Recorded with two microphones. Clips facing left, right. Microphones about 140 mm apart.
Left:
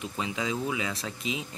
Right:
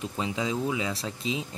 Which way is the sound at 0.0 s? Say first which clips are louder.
Right 2 dB; 30° right (ahead or behind).